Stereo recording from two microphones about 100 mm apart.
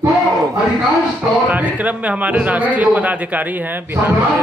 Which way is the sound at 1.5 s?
15° right (ahead or behind).